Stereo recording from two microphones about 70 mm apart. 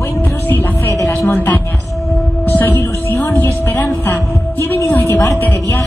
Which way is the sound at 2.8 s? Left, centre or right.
Left.